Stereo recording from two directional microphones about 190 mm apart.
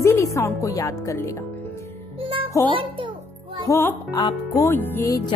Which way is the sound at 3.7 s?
15° left (ahead or behind).